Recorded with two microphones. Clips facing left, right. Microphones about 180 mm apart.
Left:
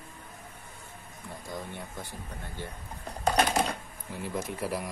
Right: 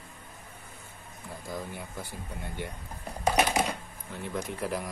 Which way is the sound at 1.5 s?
5° right (ahead or behind).